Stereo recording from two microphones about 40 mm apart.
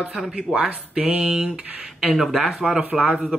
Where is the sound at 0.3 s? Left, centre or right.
Right.